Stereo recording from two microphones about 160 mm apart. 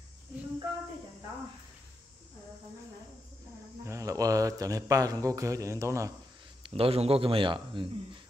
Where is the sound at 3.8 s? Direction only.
20° right (ahead or behind).